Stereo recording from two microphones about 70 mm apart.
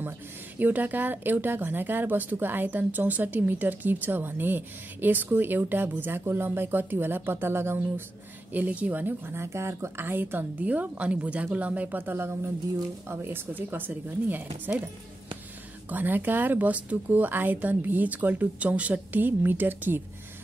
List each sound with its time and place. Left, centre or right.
0.6 s speech: right
8.5 s speech: right
15.9 s speech: right